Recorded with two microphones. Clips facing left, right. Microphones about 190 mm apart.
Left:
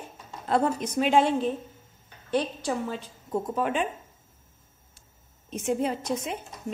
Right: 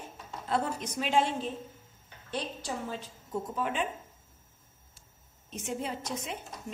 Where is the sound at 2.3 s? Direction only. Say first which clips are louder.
Left 9 dB; 60° left (ahead or behind).